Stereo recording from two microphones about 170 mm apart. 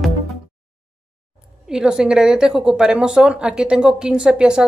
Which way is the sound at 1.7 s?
5° right (ahead or behind).